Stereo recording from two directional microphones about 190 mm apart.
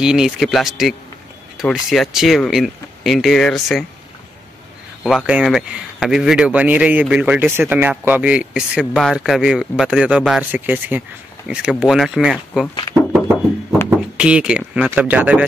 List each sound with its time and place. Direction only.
0.0 s speech: 5° right (ahead or behind)
5.0 s speech: 5° right (ahead or behind)
13.8 s speech: 5° right (ahead or behind)